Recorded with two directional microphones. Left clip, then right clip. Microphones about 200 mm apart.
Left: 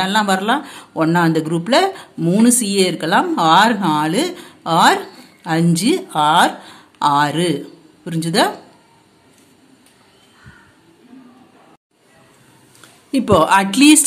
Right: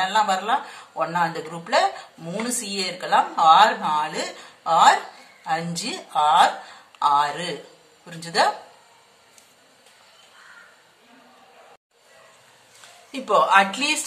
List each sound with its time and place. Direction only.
0.0 s speech: 45° left (ahead or behind)
13.1 s speech: 45° left (ahead or behind)